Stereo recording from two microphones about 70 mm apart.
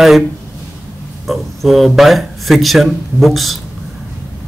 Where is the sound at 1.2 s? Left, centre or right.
Centre.